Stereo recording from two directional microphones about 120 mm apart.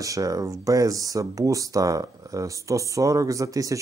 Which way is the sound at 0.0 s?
30° right (ahead or behind).